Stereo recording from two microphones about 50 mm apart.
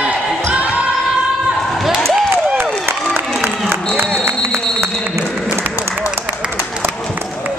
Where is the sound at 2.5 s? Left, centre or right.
Right.